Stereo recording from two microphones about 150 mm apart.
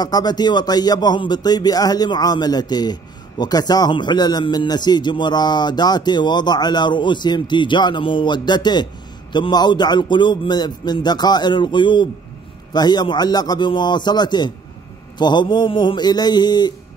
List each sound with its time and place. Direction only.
0.0 s speech: 25° left (ahead or behind)